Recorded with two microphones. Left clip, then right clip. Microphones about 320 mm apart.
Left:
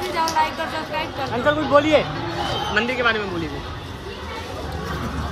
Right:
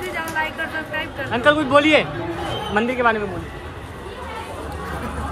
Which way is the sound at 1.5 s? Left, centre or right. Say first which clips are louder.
Right 2 dB; right.